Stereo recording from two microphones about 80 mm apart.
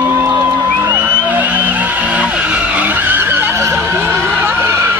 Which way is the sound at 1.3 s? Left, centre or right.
Right.